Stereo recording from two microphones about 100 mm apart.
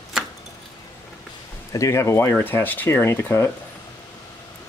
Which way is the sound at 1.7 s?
30° left (ahead or behind).